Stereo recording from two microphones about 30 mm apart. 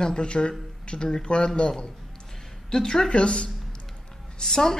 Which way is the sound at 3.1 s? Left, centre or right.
Left.